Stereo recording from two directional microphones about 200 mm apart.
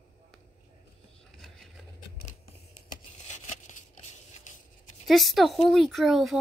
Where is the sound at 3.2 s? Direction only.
35° left (ahead or behind).